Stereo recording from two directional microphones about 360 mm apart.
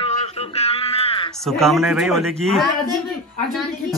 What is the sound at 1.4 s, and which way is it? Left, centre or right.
Speech, centre.